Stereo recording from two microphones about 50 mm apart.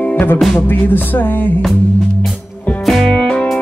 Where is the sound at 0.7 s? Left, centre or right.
Left.